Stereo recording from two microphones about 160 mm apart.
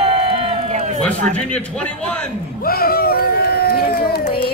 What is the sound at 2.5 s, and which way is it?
Run, 70° left (ahead or behind).